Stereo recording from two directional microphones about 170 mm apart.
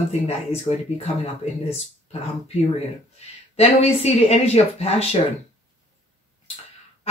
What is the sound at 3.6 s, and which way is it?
Speech, 35° left (ahead or behind).